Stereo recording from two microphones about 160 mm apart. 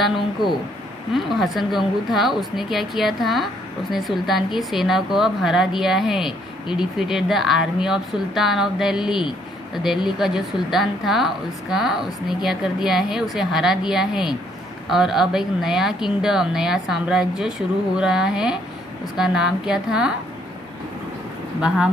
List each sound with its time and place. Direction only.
0.0 s a woman's voice: centre (ahead or behind)
21.5 s a woman's voice: 5° right (ahead or behind)